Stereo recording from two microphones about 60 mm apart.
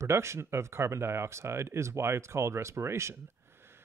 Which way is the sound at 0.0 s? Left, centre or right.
Right.